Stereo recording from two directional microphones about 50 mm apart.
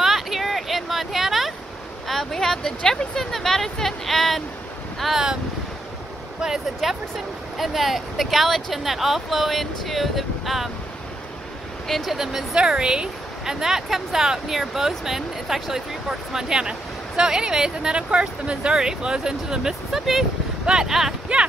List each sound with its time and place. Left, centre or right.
0.0 s a sound: centre
2.0 s speech: centre
5.0 s speech: centre
6.8 s speech: centre
11.9 s speech: centre
12.2 s speech: centre
18.7 s speech: centre
21.3 s speech: centre